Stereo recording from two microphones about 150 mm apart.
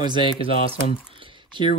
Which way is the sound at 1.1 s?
35° right (ahead or behind).